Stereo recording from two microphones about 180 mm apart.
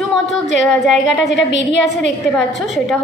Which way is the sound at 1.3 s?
75° left (ahead or behind).